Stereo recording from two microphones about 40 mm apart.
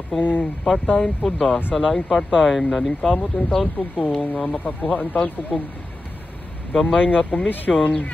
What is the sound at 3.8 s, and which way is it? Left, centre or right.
Speech, left.